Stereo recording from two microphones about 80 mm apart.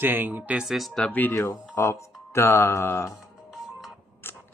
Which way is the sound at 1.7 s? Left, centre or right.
Left.